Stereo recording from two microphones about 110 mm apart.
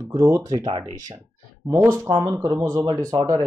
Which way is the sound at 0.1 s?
30° right (ahead or behind).